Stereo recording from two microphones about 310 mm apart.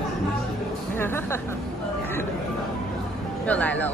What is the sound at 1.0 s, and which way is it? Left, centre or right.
Music, centre.